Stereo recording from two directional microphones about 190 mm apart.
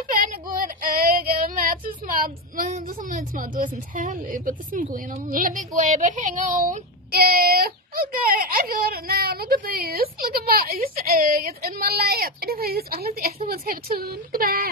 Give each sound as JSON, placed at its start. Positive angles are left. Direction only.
{"t": 0.1, "sound": "female singing", "side_deg": -45}
{"t": 5.1, "sound": "speech", "side_deg": -45}